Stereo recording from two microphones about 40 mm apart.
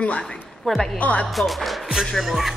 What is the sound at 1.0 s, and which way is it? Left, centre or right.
Speech, left.